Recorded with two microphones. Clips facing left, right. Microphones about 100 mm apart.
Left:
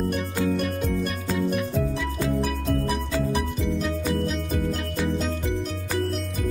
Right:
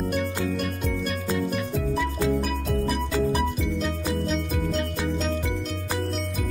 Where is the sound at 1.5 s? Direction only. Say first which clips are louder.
Left 1 dB; centre (ahead or behind).